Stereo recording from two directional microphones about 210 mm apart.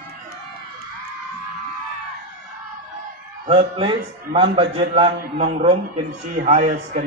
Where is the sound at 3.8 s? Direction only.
25° right (ahead or behind).